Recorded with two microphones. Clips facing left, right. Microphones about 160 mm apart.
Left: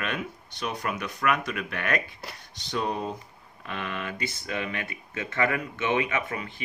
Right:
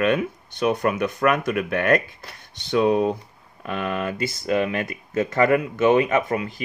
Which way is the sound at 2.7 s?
70° right (ahead or behind).